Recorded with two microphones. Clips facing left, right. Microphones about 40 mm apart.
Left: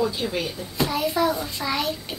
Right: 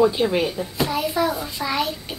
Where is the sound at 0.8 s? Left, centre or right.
Centre.